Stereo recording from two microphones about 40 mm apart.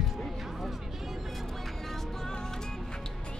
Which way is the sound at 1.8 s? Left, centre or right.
Centre.